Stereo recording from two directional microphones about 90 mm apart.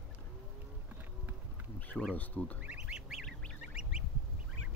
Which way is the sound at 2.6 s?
15° right (ahead or behind).